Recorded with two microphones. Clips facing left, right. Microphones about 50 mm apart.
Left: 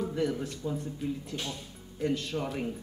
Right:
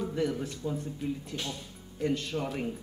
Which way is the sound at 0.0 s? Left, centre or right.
Centre.